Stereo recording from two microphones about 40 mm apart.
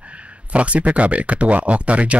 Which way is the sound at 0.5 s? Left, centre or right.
Right.